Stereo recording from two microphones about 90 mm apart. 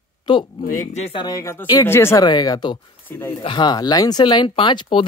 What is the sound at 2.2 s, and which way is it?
Speech, 50° left (ahead or behind).